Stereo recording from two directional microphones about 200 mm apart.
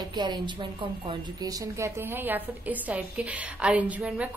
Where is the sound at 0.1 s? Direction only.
20° right (ahead or behind).